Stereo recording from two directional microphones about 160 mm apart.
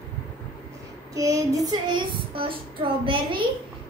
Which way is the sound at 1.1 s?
20° right (ahead or behind).